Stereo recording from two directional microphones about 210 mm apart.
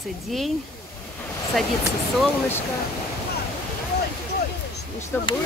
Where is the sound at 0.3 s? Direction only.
Centre (ahead or behind).